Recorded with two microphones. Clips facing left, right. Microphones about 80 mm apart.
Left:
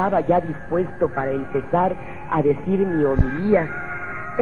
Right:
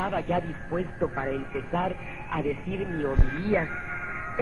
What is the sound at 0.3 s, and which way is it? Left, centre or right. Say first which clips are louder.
Speech: left 9 dB; left.